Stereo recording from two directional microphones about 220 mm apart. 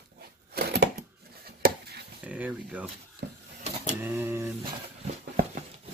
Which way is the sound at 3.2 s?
50° right (ahead or behind).